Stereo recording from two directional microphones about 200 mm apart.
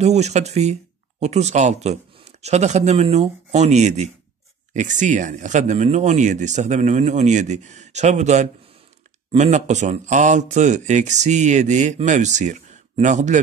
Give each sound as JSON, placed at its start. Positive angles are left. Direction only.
{"t": 0.0, "sound": "speech", "side_deg": -35}